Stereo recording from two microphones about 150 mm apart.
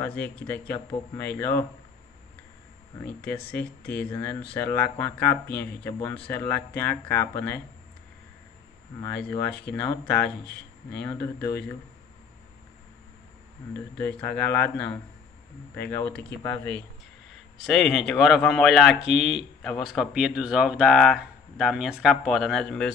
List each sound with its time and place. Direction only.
0.0 s speech: 10° left (ahead or behind)
3.0 s speech: 10° left (ahead or behind)
9.7 s speech: 10° left (ahead or behind)
13.9 s speech: 10° left (ahead or behind)
17.6 s speech: centre (ahead or behind)